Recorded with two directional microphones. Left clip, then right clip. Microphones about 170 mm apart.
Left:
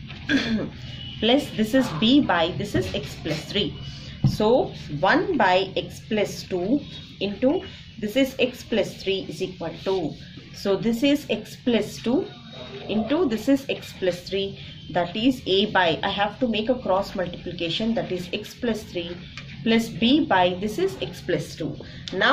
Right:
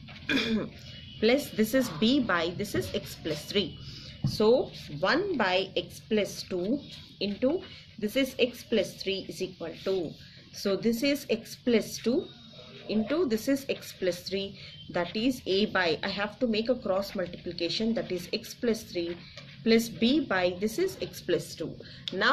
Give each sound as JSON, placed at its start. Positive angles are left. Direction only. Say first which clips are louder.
{"t": 0.3, "sound": "a woman's voice", "louder": "left 4 dB", "side_deg": -40}
{"t": 5.0, "sound": "a woman's voice", "louder": "left 7 dB", "side_deg": -35}